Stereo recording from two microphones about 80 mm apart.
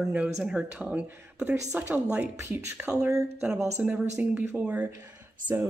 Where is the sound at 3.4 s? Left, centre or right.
Centre.